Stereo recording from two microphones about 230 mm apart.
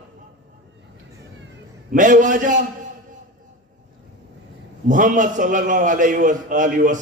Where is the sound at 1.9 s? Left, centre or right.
Right.